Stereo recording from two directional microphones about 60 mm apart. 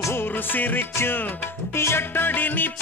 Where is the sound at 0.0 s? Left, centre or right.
Left.